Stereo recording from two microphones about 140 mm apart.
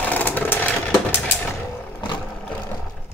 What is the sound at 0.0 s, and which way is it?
Vehicle, 10° left (ahead or behind).